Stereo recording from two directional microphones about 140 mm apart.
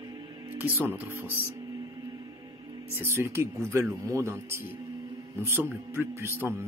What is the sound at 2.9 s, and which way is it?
Speech, 20° right (ahead or behind).